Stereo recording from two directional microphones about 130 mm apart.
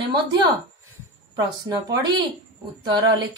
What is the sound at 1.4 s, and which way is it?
Speech, 30° right (ahead or behind).